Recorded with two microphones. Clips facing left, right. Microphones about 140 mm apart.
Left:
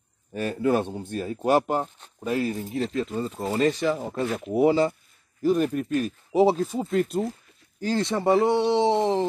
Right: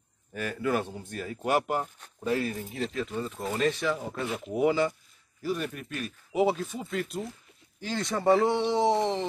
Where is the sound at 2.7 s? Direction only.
Centre (ahead or behind).